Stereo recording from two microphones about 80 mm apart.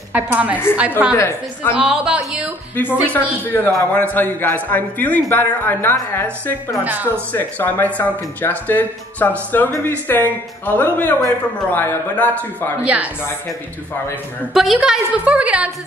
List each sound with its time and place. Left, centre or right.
0.1 s a woman's voice: centre
2.7 s a man's voice: left
6.8 s a woman's voice: right
7.3 s a man's voice: left
12.8 s a woman's voice: centre
14.5 s a woman's voice: centre